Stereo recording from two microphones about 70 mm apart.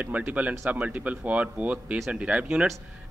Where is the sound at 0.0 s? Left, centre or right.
Right.